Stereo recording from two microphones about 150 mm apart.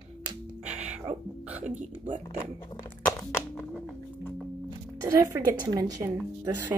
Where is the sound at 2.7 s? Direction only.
30° left (ahead or behind).